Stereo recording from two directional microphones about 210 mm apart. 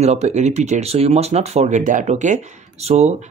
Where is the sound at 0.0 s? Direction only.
30° right (ahead or behind).